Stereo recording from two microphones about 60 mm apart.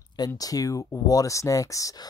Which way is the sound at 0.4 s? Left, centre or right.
Left.